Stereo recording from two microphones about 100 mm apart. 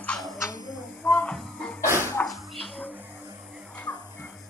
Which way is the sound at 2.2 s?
15° left (ahead or behind).